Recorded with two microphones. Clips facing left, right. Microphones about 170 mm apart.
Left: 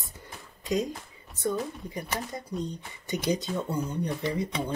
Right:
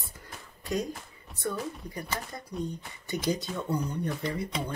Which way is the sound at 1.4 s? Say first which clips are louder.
Left 3 dB; 20° left (ahead or behind).